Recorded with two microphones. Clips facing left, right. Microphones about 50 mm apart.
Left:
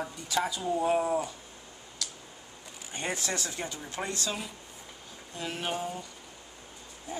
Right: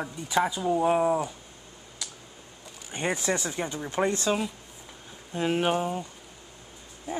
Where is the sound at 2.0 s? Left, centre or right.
Right.